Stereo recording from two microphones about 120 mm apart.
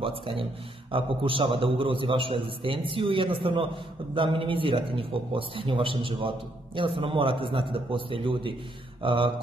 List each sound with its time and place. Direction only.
0.0 s a man's voice: 50° right (ahead or behind)